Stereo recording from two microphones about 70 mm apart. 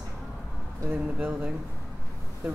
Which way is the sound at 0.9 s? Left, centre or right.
Centre.